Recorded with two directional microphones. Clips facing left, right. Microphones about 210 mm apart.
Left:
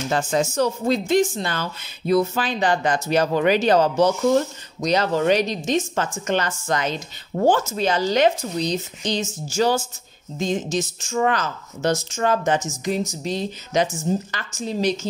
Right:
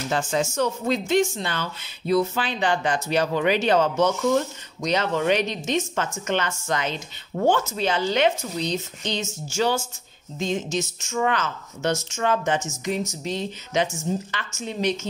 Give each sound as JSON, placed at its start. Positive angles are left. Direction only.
{"t": 0.1, "sound": "speech", "side_deg": 40}